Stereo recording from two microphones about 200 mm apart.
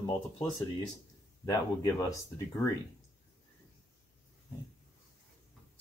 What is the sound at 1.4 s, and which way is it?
Speech, 15° left (ahead or behind).